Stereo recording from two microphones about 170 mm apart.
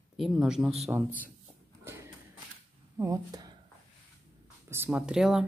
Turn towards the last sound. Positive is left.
turn(degrees=-5)  # may be behind; listen again after turning